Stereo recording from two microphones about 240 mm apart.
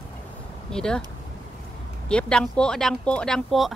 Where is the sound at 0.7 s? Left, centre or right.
Centre.